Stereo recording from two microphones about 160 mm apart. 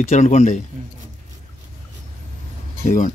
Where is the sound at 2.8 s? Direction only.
50° left (ahead or behind).